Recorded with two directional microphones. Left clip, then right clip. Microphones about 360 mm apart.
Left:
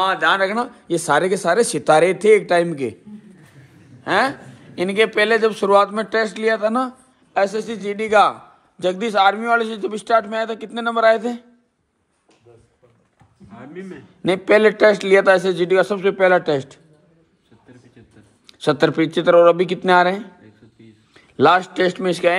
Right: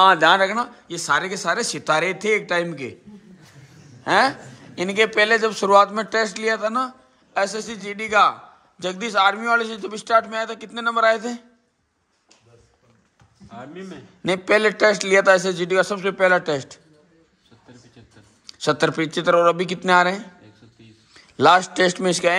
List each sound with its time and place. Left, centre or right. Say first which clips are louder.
0.0 s speech: right 3 dB; right
0.4 s a man's voice: left 1 dB; centre
4.0 s a man's voice: even; centre
13.5 s a man's voice: left 1 dB; centre
18.5 s a man's voice: left 3 dB; centre